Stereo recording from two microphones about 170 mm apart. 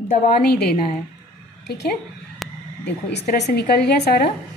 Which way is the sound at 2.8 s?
80° left.